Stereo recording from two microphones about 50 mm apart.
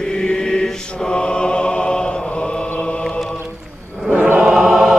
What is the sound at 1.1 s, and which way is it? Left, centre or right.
Music, centre.